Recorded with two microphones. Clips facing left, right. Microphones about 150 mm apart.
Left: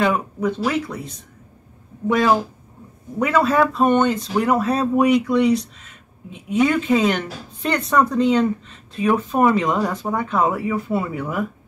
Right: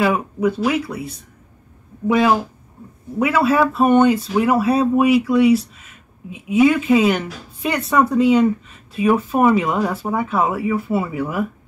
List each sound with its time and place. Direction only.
0.0 s speech: 10° right (ahead or behind)